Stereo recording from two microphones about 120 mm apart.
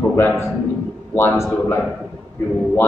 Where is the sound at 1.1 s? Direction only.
20° left (ahead or behind).